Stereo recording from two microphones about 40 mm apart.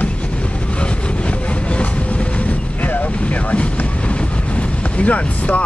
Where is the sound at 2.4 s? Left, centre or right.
Left.